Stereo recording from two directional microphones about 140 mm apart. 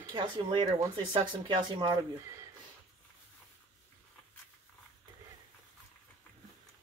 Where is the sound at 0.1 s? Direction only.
35° right (ahead or behind).